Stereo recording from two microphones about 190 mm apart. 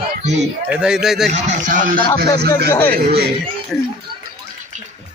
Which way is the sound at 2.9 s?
55° right (ahead or behind).